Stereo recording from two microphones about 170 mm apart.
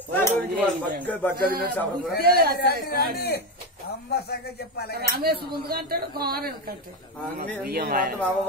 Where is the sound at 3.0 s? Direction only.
70° left (ahead or behind).